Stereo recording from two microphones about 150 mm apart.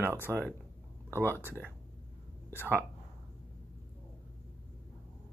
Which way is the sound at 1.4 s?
15° right (ahead or behind).